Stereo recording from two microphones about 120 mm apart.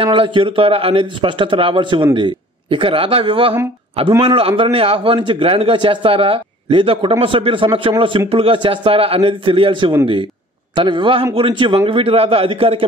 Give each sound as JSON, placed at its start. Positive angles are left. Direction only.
{"t": 0.0, "sound": "a man's voice", "side_deg": -45}